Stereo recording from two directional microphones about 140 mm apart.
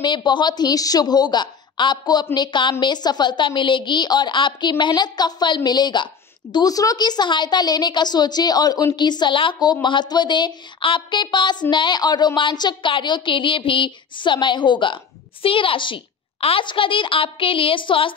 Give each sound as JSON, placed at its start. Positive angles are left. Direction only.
{"t": 0.0, "sound": "a woman's voice", "side_deg": 35}